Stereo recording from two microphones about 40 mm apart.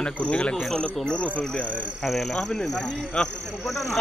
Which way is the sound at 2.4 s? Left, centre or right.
Centre.